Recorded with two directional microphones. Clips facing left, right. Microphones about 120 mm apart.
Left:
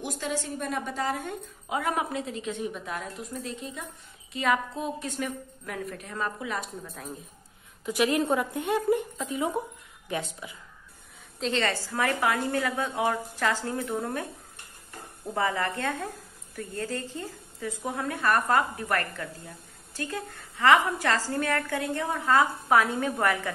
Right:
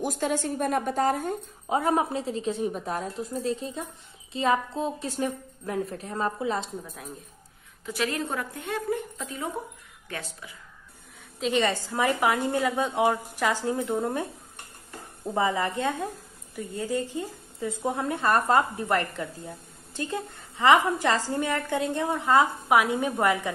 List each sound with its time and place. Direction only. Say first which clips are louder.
0.0 s a woman's voice: right 5 dB; 45° right (ahead or behind); by 6.7 s 30° right (ahead or behind)
7.8 s a woman's voice: left 4 dB; 15° left (ahead or behind)
11.3 s a woman's voice: right 3 dB; 10° right (ahead or behind)
15.3 s a woman's voice: right 2 dB; 20° right (ahead or behind)